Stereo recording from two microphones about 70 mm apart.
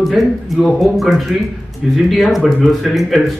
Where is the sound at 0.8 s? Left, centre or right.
Centre.